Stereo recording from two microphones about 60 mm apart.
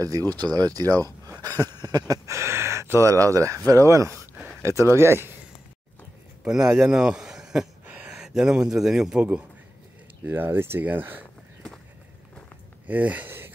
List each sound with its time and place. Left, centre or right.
0.2 s speech: left
0.5 s speech: right
1.4 s a sound: right
2.3 s speech: right
6.4 s a man's voice: centre
7.8 s a sound: right
8.1 s a man's voice: centre
10.2 s speech: right
12.8 s speech: right